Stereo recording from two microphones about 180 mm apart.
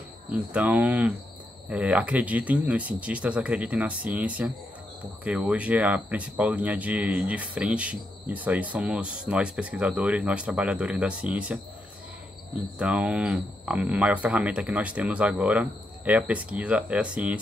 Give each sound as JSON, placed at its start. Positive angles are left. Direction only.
{"t": 0.3, "sound": "speech", "side_deg": -5}
{"t": 12.7, "sound": "speech", "side_deg": -5}